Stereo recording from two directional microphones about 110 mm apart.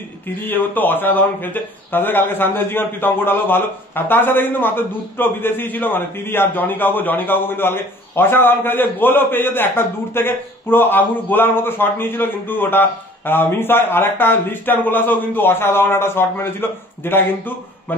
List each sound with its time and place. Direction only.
0.5 s a man's voice: 15° left (ahead or behind)